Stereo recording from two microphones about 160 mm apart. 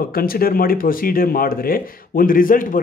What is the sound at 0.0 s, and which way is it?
Speech, 65° left (ahead or behind).